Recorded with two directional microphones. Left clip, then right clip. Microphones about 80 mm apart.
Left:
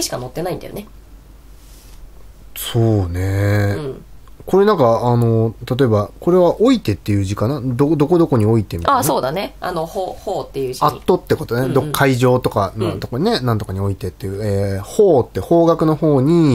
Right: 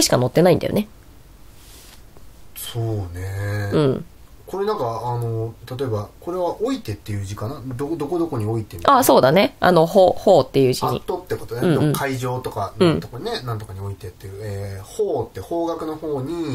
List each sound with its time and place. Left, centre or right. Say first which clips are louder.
0.0 s speech: right 7 dB; right
2.5 s speech: left 10 dB; left
8.7 s speech: right 5 dB; centre; by 10.8 s right
11.1 s speech: left 9 dB; left